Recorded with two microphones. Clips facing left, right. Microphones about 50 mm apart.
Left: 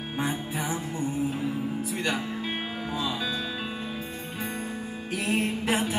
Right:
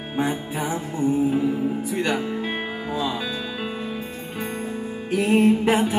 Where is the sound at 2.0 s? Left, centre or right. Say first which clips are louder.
Right 5 dB; centre.